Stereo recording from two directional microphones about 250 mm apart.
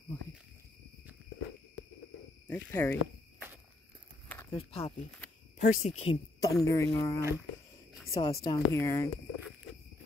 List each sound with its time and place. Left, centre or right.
2.4 s speech: centre
4.5 s speech: left
7.2 s speech: centre
8.1 s a woman's voice: centre